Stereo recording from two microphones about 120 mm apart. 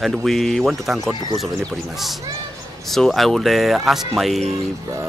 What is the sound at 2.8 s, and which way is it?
Speech, centre (ahead or behind).